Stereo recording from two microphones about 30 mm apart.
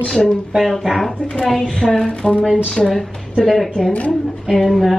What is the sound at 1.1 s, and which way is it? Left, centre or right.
Speech, left.